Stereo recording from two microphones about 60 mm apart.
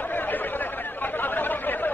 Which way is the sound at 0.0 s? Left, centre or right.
Left.